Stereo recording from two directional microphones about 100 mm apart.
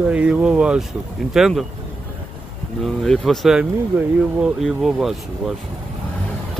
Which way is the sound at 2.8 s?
5° left (ahead or behind).